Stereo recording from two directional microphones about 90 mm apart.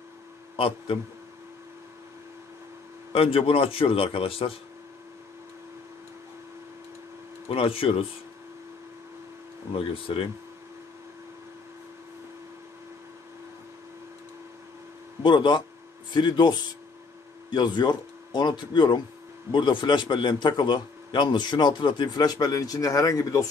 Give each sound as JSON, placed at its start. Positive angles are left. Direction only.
{"t": 0.6, "sound": "speech", "side_deg": 90}
{"t": 3.1, "sound": "speech", "side_deg": 90}
{"t": 7.4, "sound": "speech", "side_deg": 90}
{"t": 10.1, "sound": "speech", "side_deg": 75}
{"t": 15.2, "sound": "a man's voice", "side_deg": 60}